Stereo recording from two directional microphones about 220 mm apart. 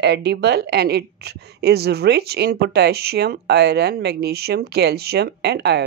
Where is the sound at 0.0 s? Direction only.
50° right (ahead or behind).